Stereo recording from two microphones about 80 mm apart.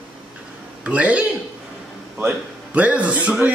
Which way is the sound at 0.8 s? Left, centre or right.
Centre.